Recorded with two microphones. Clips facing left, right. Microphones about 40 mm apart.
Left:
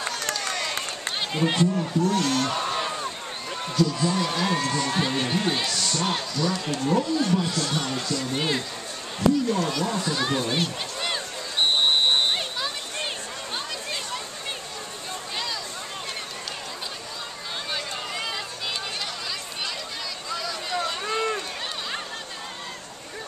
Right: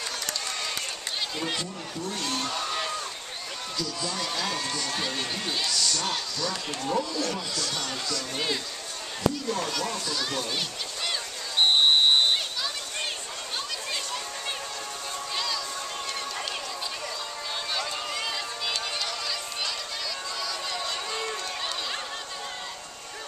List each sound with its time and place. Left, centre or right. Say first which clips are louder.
0.0 s run: left 4 dB; left
1.4 s speech: left 12 dB; left
2.0 s a man's voice: left 6 dB; left
2.5 s a sound: left 3 dB; centre
3.7 s speech: left 9 dB; left
7.7 s speech: left 4 dB; centre
9.9 s speech: left 5 dB; left
17.7 s run: even; centre
20.7 s run: left 5 dB; centre